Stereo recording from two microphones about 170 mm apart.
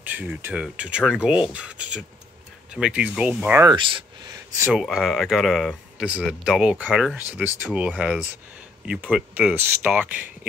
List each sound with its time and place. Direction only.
0.0 s speech: 10° right (ahead or behind)
3.6 s speech: 25° right (ahead or behind)
4.7 s speech: centre (ahead or behind)